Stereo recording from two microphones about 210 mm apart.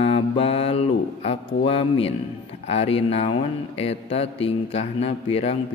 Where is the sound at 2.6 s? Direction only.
30° left (ahead or behind).